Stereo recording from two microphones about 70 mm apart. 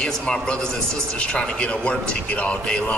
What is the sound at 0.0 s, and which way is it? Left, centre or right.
A man's voice, centre.